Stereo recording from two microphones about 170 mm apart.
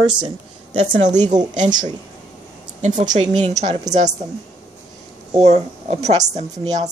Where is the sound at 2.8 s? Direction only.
45° right (ahead or behind).